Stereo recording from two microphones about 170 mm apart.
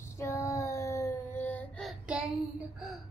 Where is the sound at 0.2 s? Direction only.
20° left (ahead or behind).